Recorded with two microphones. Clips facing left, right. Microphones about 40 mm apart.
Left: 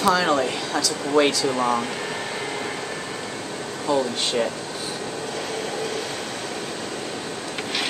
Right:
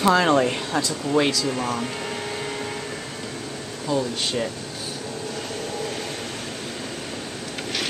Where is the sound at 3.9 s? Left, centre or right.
Centre.